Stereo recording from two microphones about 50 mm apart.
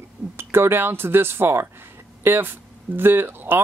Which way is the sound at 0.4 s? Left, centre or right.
Right.